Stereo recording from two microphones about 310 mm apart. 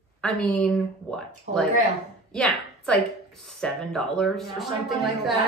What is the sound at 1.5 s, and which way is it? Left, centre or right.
Speech, right.